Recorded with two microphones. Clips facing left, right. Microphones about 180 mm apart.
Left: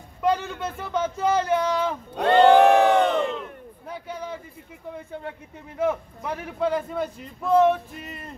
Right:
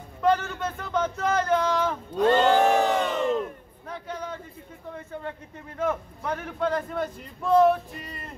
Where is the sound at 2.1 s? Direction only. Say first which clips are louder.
Left 4 dB; 65° left (ahead or behind).